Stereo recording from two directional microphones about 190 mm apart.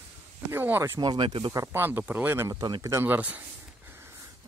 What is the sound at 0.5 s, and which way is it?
Speech, 10° right (ahead or behind).